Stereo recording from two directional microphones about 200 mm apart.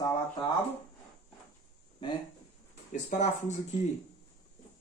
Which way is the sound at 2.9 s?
35° left (ahead or behind).